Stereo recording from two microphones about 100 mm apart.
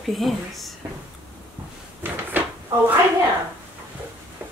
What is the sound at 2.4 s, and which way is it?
Drawer open or close, 20° right (ahead or behind).